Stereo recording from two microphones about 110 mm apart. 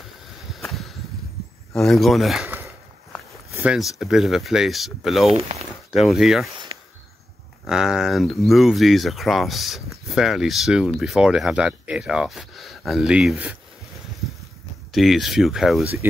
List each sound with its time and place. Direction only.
0.5 s a sound: centre (ahead or behind)
1.8 s speech: centre (ahead or behind)
3.6 s speech: 5° right (ahead or behind)
5.3 s speech: 65° right (ahead or behind)
5.9 s speech: centre (ahead or behind)
6.5 s a sound: 45° right (ahead or behind)
7.6 s speech: 5° right (ahead or behind)
14.9 s speech: centre (ahead or behind)